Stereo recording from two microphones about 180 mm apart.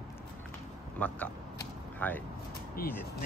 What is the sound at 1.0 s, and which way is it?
Speech, 10° left (ahead or behind).